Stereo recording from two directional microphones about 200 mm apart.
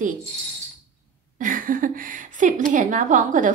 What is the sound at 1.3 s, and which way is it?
A woman's voice, 40° right (ahead or behind).